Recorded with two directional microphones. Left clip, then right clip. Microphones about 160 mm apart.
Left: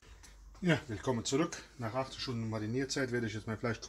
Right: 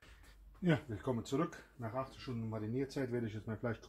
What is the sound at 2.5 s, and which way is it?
Speech, 25° right (ahead or behind).